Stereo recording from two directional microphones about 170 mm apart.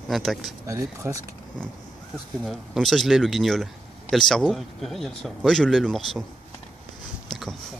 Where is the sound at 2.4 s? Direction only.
Centre (ahead or behind).